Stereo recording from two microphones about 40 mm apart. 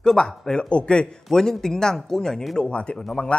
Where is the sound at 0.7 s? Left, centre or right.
Left.